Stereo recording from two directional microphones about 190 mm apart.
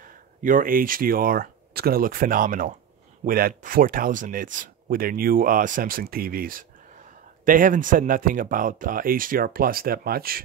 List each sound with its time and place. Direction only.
0.4 s speech: 45° right (ahead or behind)